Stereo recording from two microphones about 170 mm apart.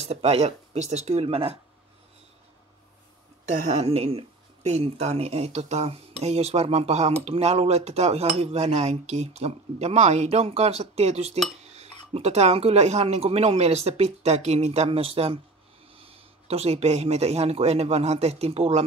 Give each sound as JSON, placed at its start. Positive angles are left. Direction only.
{"t": 0.0, "sound": "speech", "side_deg": -40}
{"t": 3.4, "sound": "speech", "side_deg": -45}